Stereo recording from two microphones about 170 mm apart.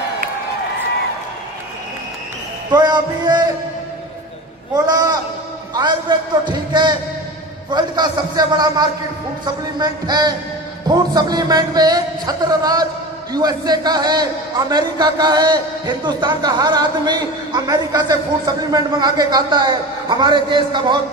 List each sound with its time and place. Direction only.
2.7 s a man's voice: 25° right (ahead or behind)
4.7 s a man's voice: 25° right (ahead or behind)